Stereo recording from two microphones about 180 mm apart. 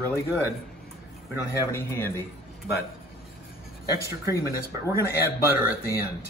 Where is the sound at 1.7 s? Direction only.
15° left (ahead or behind).